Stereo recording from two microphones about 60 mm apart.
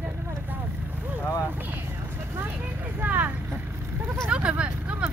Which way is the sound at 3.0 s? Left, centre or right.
Right.